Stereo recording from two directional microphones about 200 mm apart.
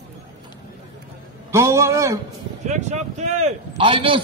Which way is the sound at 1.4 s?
15° right (ahead or behind).